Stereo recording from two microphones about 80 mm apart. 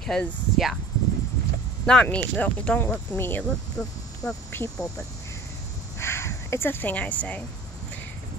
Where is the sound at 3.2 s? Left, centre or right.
Left.